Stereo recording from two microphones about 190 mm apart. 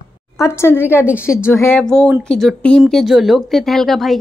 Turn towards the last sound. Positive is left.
turn(degrees=0)  # may be behind; listen again after turning